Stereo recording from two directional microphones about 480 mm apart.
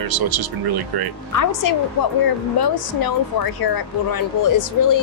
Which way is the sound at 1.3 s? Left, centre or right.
Left.